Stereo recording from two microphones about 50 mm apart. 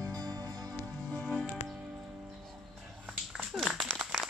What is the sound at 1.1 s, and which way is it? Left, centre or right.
Music, centre.